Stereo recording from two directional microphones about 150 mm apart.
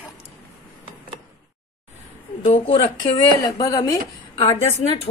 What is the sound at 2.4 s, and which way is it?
Speech, 45° left (ahead or behind).